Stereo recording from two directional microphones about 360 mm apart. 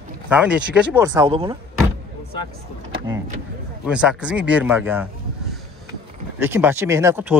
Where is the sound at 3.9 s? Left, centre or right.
Centre.